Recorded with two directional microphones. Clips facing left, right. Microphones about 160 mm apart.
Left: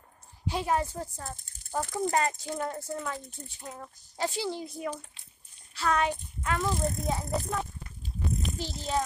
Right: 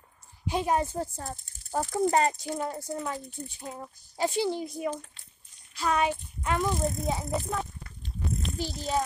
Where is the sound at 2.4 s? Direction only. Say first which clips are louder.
Right 1 dB; 15° right (ahead or behind).